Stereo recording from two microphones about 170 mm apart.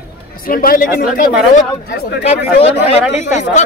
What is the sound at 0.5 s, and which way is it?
Speech, 60° left (ahead or behind).